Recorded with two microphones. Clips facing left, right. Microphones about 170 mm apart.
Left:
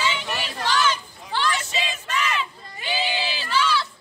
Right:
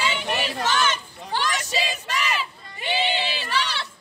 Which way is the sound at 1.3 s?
40° right (ahead or behind).